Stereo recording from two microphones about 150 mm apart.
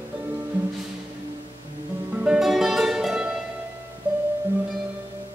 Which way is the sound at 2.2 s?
5° right (ahead or behind).